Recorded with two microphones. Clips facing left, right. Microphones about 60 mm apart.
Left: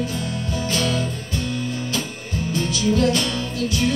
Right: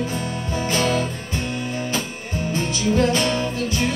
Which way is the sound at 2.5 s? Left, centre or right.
Right.